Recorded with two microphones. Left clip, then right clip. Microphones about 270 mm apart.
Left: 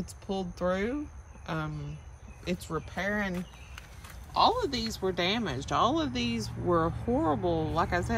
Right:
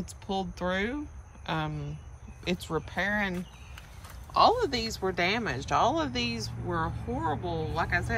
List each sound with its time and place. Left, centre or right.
0.0 s speech: centre